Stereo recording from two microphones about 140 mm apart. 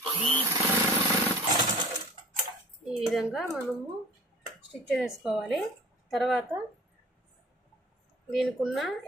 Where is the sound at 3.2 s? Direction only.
Centre (ahead or behind).